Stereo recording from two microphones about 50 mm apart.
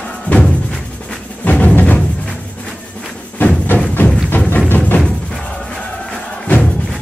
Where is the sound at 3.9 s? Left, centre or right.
Left.